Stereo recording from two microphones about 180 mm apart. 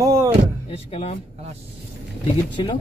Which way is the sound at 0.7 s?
35° left (ahead or behind).